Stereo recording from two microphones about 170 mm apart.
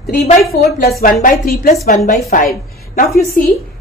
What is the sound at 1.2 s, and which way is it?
A woman's voice, 60° left (ahead or behind).